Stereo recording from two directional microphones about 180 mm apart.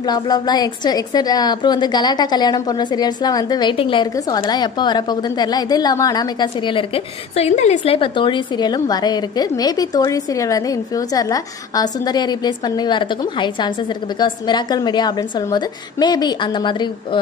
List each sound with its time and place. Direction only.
0.0 s a woman's voice: 20° left (ahead or behind)
7.3 s a woman's voice: 40° left (ahead or behind)